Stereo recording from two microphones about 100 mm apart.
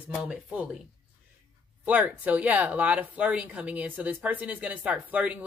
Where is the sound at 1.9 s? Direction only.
15° right (ahead or behind).